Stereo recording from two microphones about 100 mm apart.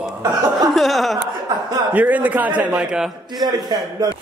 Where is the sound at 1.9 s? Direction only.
15° right (ahead or behind).